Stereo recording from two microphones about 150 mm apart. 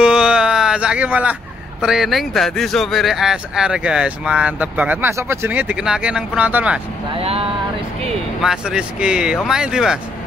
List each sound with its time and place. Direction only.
0.0 s a sound: 5° right (ahead or behind)
1.8 s speech: 5° right (ahead or behind)
7.2 s speech: 40° right (ahead or behind)
8.4 s speech: 5° right (ahead or behind)